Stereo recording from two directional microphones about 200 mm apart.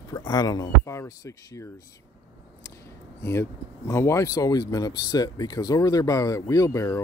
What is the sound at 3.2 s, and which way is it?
Speech, 15° left (ahead or behind).